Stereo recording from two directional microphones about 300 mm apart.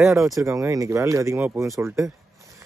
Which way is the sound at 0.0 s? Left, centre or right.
Centre.